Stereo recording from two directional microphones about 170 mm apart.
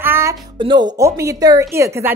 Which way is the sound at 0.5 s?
30° right (ahead or behind).